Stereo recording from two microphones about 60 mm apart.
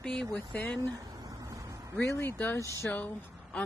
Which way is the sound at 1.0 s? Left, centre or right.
Right.